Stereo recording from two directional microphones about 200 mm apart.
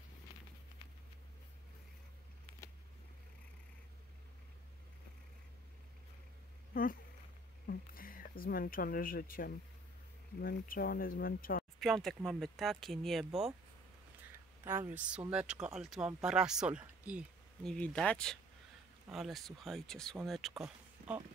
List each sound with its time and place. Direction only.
6.7 s a sound: 45° left (ahead or behind)
7.6 s speech: 45° left (ahead or behind)
11.8 s speech: centre (ahead or behind)
14.6 s speech: 10° right (ahead or behind)
17.7 s speech: 5° left (ahead or behind)
21.0 s a sound: 40° right (ahead or behind)